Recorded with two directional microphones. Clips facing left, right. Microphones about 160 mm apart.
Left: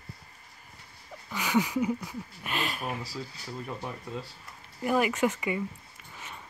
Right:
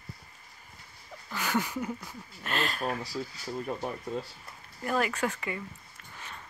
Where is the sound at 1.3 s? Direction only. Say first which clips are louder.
Left 4 dB; 5° left (ahead or behind).